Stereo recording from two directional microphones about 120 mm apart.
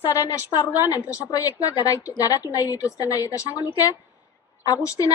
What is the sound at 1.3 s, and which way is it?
A woman's voice, 30° left (ahead or behind).